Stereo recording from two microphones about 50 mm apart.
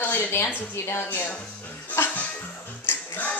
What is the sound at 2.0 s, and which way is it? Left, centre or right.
Music, left.